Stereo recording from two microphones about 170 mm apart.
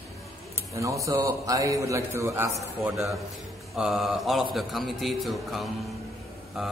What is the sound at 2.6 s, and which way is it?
A man's voice, centre (ahead or behind).